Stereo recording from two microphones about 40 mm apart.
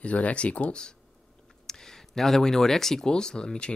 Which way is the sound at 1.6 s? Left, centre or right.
Centre.